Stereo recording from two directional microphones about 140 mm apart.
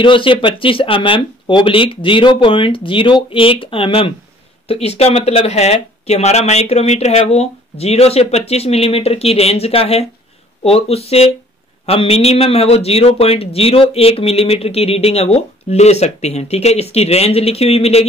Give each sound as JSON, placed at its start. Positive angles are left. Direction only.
{"t": 0.0, "sound": "a man's voice", "side_deg": 35}